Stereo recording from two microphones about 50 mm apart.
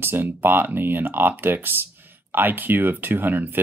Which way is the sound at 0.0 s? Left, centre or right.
Right.